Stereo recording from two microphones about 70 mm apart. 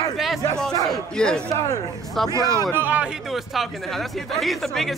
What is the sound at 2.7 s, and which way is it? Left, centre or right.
Speech, right.